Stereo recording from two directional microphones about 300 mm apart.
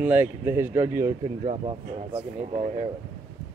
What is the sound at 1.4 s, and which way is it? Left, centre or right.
Speech, right.